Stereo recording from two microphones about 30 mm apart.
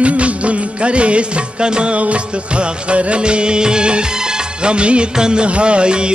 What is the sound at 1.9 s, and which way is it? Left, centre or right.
Music of bollywood, right.